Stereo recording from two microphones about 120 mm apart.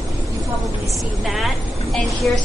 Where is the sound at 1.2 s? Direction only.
Centre (ahead or behind).